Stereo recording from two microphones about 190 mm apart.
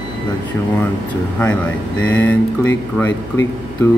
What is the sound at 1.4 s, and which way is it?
Speech, 10° left (ahead or behind).